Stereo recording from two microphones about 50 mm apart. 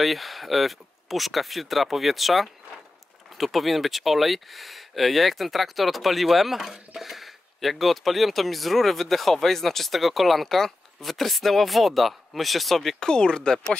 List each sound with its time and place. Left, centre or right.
0.0 s speech: centre
13.1 s speech: centre